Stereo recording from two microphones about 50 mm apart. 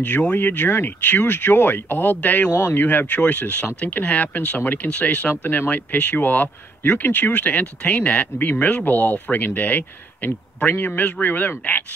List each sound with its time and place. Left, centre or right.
0.4 s speech: left